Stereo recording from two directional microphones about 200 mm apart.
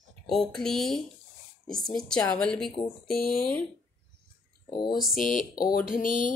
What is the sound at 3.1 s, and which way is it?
Speech, 50° left (ahead or behind).